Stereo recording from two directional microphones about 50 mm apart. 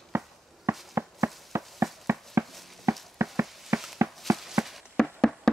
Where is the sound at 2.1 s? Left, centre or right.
Right.